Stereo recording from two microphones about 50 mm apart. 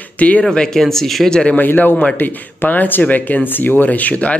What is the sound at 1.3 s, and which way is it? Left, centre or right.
Speech, centre.